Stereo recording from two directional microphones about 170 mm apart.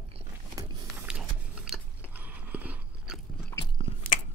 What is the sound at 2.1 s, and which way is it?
Biting, 10° right (ahead or behind).